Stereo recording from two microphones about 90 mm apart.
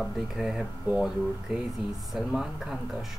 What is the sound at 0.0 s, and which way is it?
Speech, centre (ahead or behind).